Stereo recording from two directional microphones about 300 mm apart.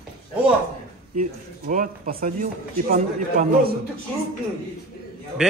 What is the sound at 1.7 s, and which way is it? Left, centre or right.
A man's voice, right.